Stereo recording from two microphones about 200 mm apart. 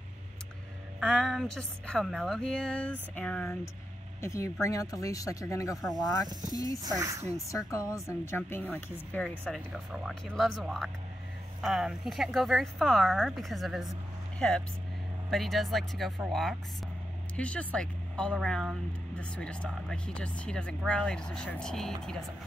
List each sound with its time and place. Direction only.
0.9 s speech: centre (ahead or behind); by 6.8 s 20° left (ahead or behind)
6.8 s speech: 20° right (ahead or behind)
7.4 s speech: 15° left (ahead or behind)